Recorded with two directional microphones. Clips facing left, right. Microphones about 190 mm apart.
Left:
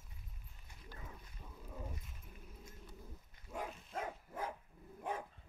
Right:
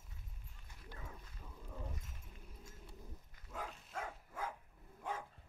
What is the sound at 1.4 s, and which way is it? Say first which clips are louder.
Dog: left 2 dB; 10° left (ahead or behind).